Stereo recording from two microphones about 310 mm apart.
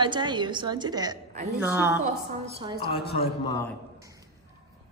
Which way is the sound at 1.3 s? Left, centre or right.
Right.